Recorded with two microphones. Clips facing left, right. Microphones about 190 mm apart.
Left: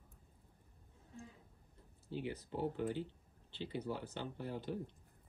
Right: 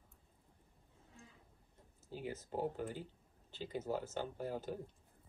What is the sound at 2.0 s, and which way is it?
Speech, 45° right (ahead or behind).